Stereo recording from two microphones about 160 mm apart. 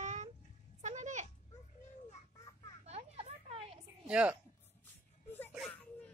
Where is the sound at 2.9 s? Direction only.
40° right (ahead or behind).